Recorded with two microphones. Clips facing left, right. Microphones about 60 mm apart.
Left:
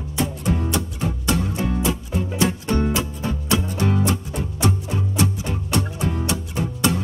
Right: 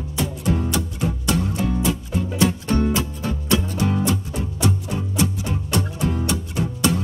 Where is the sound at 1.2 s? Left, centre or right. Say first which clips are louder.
Even; left.